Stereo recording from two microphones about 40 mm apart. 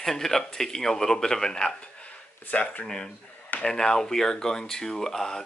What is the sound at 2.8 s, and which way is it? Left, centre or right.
Speech, left.